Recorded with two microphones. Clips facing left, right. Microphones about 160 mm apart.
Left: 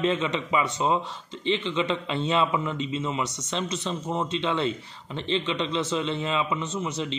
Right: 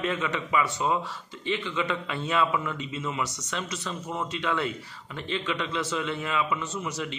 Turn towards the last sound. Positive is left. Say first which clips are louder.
# left 3 dB
turn(degrees=25)  # may be behind; listen again after turning